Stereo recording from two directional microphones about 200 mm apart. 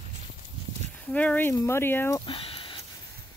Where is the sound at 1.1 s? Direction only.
5° left (ahead or behind).